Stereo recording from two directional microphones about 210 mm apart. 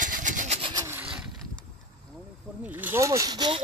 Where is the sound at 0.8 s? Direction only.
5° right (ahead or behind).